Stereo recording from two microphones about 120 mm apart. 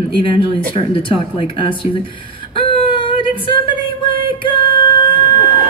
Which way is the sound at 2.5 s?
50° left (ahead or behind).